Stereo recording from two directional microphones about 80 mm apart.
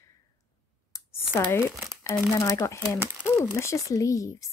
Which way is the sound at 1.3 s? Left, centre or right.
Left.